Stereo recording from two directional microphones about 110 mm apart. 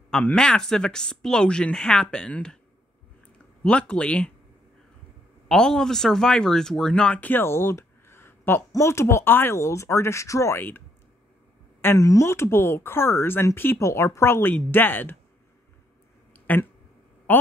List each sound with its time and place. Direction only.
0.1 s speech: 10° left (ahead or behind)
3.6 s speech: 10° left (ahead or behind)
5.5 s speech: 5° left (ahead or behind); by 10.8 s 20° left (ahead or behind)
11.8 s speech: 25° left (ahead or behind)
16.3 s a sound: 15° left (ahead or behind)